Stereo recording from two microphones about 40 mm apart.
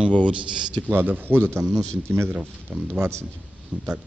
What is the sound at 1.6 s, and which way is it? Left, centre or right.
Speech, centre.